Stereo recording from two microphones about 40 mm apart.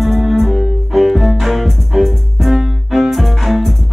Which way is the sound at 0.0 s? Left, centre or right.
Centre.